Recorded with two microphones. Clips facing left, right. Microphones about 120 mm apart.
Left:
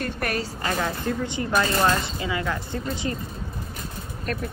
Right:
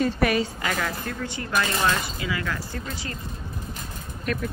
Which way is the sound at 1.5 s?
40° left (ahead or behind).